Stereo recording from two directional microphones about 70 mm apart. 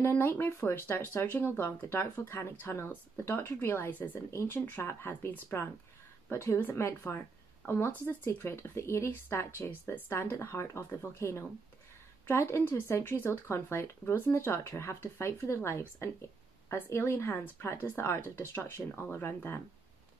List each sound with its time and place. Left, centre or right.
0.0 s speech: left
4.3 s speech: left